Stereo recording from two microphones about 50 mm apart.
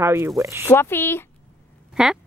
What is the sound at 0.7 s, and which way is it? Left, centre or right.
Speech, left.